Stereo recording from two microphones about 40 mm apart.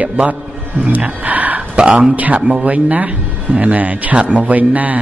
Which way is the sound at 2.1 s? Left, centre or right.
Right.